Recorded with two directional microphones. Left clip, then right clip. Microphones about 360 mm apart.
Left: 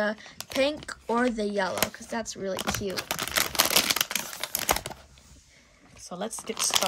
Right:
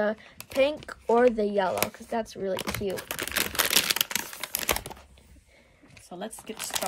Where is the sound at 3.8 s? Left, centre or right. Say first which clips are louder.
Even; centre.